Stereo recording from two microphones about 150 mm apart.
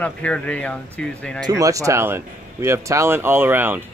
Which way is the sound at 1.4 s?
20° right (ahead or behind).